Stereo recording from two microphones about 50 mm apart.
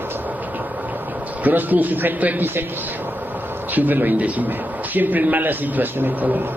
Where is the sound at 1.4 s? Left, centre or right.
Right.